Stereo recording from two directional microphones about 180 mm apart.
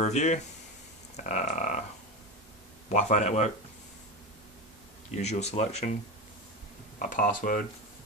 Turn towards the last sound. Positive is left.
turn(degrees=45)  # may be behind; listen again after turning